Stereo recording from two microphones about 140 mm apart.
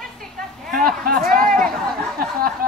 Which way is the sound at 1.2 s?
90° right.